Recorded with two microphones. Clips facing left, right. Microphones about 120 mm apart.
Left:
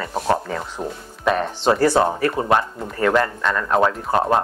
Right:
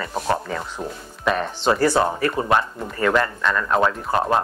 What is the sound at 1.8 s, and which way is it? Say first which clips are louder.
Speech: left 2 dB; 30° left (ahead or behind).